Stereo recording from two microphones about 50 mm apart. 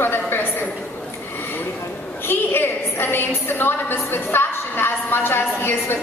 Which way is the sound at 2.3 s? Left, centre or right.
Left.